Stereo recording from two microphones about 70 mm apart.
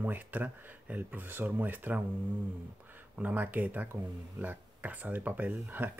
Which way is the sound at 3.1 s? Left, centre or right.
Right.